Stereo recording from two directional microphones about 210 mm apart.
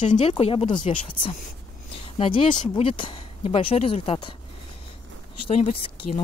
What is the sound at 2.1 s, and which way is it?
Speech, 25° left (ahead or behind).